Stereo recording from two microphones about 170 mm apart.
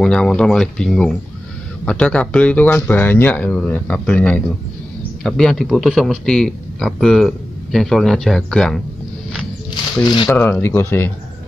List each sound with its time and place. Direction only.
0.0 s a man's voice: 5° left (ahead or behind)
10.0 s speech: 25° left (ahead or behind)
10.3 s speech: 10° left (ahead or behind)